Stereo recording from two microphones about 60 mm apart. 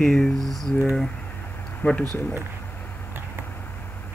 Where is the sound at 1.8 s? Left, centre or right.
Left.